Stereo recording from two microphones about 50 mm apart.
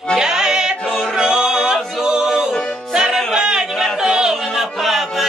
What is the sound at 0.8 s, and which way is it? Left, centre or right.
Choir, centre.